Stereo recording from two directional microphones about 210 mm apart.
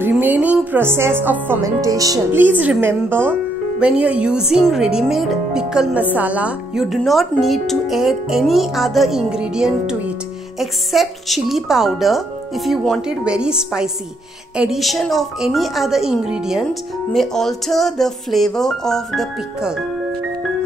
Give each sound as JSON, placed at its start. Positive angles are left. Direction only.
{"t": 0.0, "sound": "speech", "side_deg": -10}